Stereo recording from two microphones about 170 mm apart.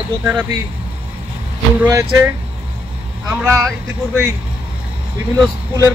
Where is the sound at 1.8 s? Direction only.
15° right (ahead or behind).